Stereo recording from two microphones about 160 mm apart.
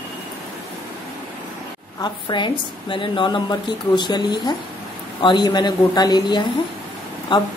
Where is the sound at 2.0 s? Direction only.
30° left (ahead or behind).